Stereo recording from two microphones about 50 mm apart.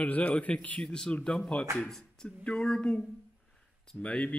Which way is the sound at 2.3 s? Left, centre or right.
Centre.